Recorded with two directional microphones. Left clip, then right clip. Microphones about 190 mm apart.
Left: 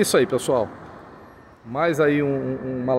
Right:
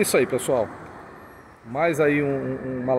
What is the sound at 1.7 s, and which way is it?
A man's voice, 15° left (ahead or behind).